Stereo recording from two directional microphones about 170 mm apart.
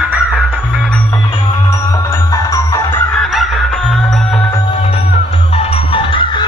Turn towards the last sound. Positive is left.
turn(degrees=30)  # may be behind; listen again after turning